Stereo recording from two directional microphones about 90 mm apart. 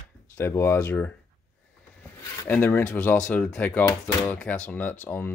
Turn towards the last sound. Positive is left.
turn(degrees=20)  # may be behind; listen again after turning